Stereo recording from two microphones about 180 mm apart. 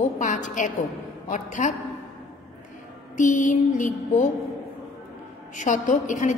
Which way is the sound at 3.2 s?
45° left (ahead or behind).